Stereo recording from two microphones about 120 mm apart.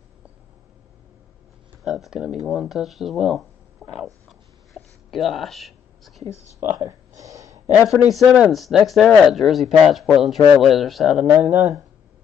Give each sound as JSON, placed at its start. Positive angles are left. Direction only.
{"t": 1.9, "sound": "speech", "side_deg": -5}
{"t": 6.7, "sound": "a sound", "side_deg": -20}
{"t": 8.1, "sound": "speech", "side_deg": 0}
{"t": 11.4, "sound": "speech", "side_deg": -25}